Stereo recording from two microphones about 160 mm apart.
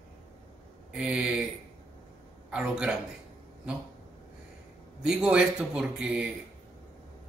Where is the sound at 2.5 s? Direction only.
5° right (ahead or behind).